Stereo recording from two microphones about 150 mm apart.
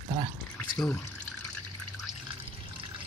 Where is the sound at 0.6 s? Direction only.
10° left (ahead or behind).